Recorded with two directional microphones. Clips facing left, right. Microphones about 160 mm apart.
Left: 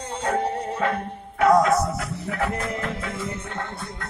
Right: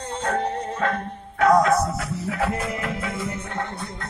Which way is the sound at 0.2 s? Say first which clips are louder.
Left 1 dB; 10° left (ahead or behind).